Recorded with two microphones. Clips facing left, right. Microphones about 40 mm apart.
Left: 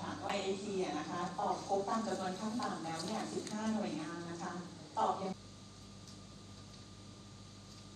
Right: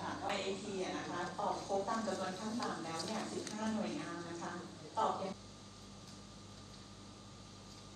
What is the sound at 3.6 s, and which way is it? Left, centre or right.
Speech, right.